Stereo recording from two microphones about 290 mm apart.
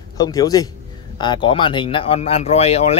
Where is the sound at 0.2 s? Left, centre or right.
Centre.